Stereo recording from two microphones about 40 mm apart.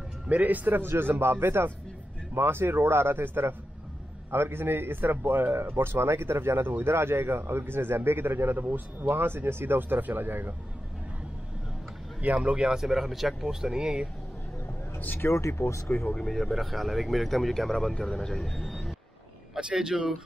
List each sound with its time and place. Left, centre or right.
0.3 s a man's voice: right
0.7 s speech: right
5.8 s speech: right
9.0 s speech: right
12.4 s speech: right
12.8 s speech: centre
13.5 s a man's voice: centre
15.1 s speech: left
16.2 s speech: centre
19.5 s a man's voice: centre